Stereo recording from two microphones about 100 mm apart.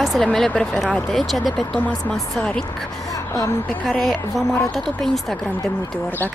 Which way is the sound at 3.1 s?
35° left (ahead or behind).